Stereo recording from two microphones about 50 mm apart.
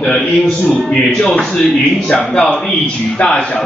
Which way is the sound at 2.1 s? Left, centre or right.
Left.